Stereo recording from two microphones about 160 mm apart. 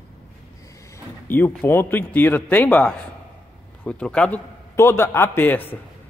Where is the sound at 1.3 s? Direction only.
10° left (ahead or behind).